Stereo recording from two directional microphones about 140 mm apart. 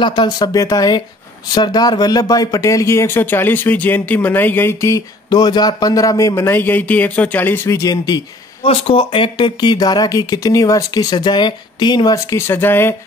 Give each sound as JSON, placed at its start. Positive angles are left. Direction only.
{"t": 0.0, "sound": "speech", "side_deg": 30}
{"t": 8.6, "sound": "speech", "side_deg": 40}